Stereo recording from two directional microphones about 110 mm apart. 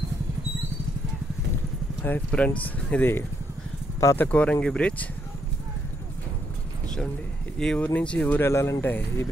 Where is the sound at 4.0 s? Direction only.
30° left (ahead or behind).